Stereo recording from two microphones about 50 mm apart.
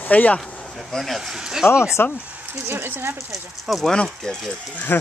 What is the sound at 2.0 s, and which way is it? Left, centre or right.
Speech, left.